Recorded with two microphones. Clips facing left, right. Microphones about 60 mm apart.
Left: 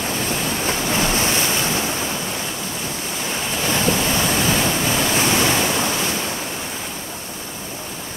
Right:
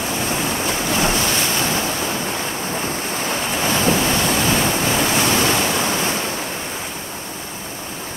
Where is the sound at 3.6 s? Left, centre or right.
Right.